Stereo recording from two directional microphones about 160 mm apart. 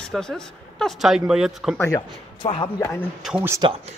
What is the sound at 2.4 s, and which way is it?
Speech, 35° left (ahead or behind).